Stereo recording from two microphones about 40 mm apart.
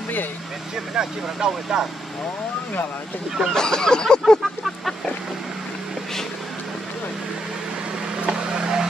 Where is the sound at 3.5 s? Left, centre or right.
Centre.